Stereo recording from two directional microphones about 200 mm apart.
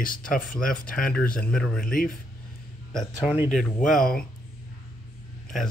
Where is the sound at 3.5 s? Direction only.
5° left (ahead or behind).